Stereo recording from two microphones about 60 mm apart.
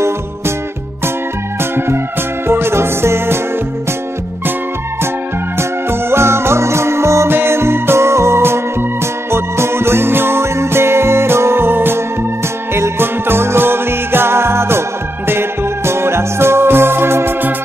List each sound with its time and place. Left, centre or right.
1.6 s music: right
5.6 s music: right